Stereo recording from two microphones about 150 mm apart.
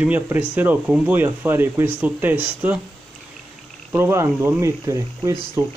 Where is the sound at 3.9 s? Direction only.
20° right (ahead or behind).